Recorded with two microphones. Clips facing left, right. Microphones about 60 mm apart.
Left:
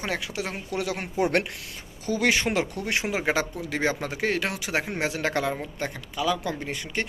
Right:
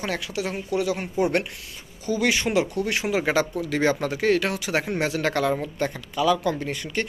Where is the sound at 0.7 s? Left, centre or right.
Left.